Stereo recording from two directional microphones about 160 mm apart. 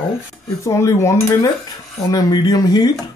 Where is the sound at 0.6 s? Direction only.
20° left (ahead or behind).